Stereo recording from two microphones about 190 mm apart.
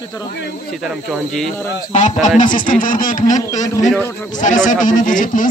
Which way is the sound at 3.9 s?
10° left (ahead or behind).